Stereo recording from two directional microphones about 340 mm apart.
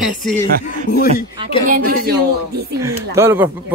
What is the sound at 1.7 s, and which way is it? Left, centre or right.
Speech, right.